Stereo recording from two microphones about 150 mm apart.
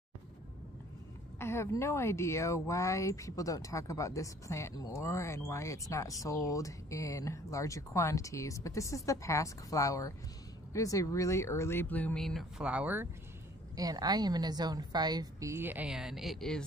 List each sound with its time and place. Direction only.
1.4 s speech: 20° left (ahead or behind); by 13.1 s 10° right (ahead or behind)
13.7 s a woman's voice: 25° right (ahead or behind); by 16.6 s 5° left (ahead or behind)